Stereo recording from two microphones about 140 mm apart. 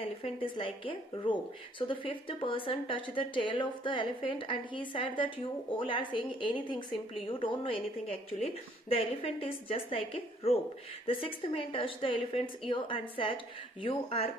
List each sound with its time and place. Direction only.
0.0 s speech: 40° left (ahead or behind)